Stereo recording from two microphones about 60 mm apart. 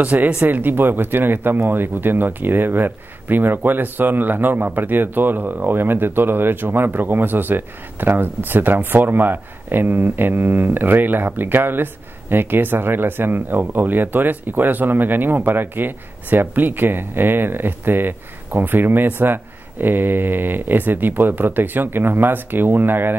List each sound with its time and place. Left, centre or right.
0.0 s speech: right